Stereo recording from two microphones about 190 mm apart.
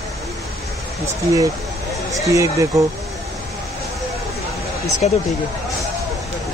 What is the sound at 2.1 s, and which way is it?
Speech, 15° right (ahead or behind).